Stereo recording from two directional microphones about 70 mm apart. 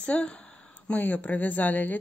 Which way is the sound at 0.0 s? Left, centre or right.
Centre.